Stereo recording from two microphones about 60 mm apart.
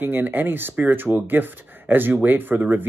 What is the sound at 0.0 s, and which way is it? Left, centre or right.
Speech, right.